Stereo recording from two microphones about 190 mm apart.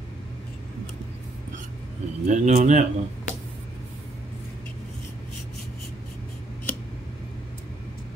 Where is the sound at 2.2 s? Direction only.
40° right (ahead or behind).